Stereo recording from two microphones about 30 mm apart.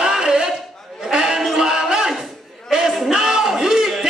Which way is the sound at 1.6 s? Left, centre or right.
Right.